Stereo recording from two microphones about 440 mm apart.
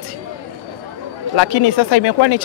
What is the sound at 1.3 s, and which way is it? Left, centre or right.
Speech, left.